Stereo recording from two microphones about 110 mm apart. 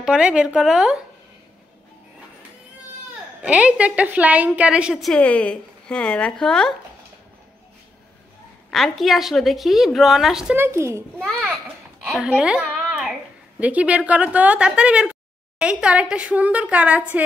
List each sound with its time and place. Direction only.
0.0 s a woman's voice: 5° right (ahead or behind)
3.4 s a woman's voice: 10° right (ahead or behind)
4.9 s a woman's voice: centre (ahead or behind)
5.2 s a woman's voice: 10° left (ahead or behind)
8.6 s a woman's voice: centre (ahead or behind)
10.5 s speech: 20° right (ahead or behind)
12.2 s babbling: 10° right (ahead or behind)
13.6 s a woman's voice: 15° right (ahead or behind)